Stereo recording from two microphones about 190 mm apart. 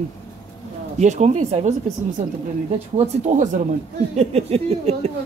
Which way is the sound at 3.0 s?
40° right (ahead or behind).